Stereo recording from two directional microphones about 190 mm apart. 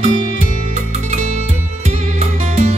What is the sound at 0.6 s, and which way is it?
Music, 35° right (ahead or behind).